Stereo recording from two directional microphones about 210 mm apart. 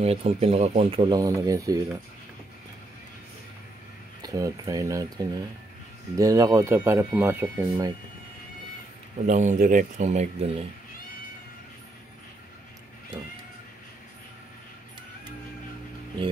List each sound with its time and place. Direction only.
0.0 s speech: 30° right (ahead or behind)
4.2 s speech: 15° right (ahead or behind)
9.2 s speech: 35° right (ahead or behind)